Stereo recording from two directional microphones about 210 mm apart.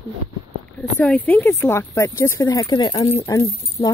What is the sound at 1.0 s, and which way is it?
Speech, 5° left (ahead or behind).